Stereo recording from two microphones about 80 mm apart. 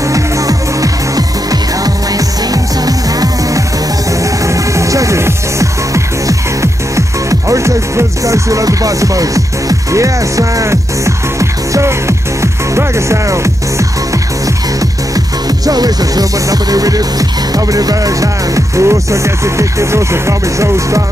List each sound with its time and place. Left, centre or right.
0.1 s music: right
15.6 s music: right